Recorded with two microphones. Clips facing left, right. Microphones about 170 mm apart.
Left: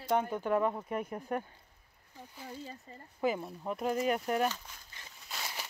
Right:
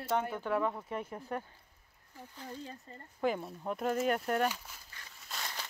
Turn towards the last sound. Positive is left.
turn(degrees=5)  # may be behind; listen again after turning